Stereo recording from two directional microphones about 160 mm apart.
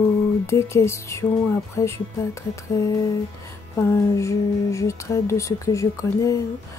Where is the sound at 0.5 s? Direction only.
20° left (ahead or behind).